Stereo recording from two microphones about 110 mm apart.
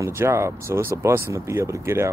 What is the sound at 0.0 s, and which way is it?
Speech, 25° right (ahead or behind).